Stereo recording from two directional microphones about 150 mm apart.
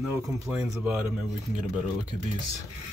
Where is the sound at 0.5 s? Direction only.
10° right (ahead or behind).